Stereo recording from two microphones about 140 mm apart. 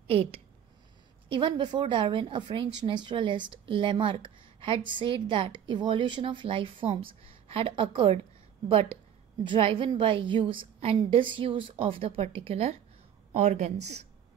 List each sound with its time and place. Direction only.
0.1 s a woman's voice: 45° right (ahead or behind)